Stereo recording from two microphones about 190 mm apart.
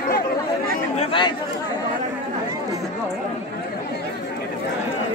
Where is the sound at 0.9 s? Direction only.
25° left (ahead or behind).